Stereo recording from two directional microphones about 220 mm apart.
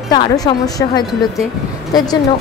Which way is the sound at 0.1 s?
20° left (ahead or behind).